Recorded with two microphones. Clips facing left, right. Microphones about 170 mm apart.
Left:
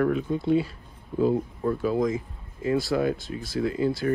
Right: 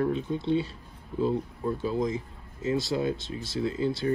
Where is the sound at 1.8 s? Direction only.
25° right (ahead or behind).